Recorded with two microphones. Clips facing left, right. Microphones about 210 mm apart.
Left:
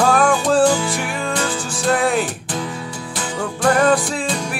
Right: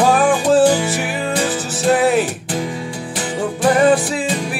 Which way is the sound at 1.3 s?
15° right (ahead or behind).